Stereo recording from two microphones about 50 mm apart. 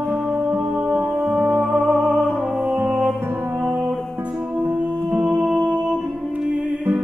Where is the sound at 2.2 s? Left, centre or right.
Right.